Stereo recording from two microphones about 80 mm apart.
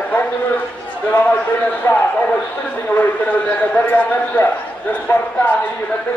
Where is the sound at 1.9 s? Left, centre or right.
Left.